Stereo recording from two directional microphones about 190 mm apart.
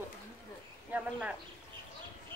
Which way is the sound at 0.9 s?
5° right (ahead or behind).